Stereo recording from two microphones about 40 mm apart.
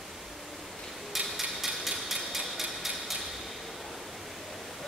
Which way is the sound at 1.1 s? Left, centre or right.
Centre.